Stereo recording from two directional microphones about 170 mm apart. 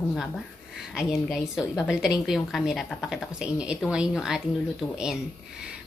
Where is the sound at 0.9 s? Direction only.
Centre (ahead or behind).